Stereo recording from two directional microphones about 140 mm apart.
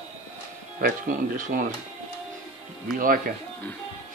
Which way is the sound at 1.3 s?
70° right (ahead or behind).